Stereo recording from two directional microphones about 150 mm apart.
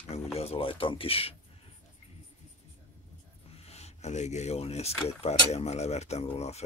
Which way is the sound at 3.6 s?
45° left (ahead or behind).